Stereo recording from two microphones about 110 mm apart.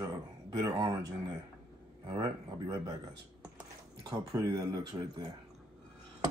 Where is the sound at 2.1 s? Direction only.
45° right (ahead or behind).